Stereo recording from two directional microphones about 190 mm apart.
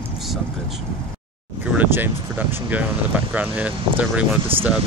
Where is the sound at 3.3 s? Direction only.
5° right (ahead or behind).